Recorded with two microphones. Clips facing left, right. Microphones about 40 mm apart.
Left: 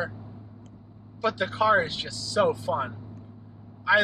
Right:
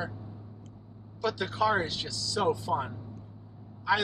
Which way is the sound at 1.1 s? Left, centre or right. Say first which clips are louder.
Left 4 dB; left.